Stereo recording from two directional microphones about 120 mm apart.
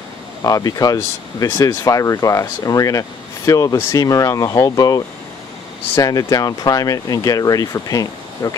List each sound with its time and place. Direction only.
0.4 s speech: 30° left (ahead or behind)